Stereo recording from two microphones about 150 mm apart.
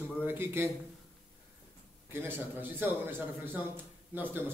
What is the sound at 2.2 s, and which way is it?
A man's voice, 15° right (ahead or behind).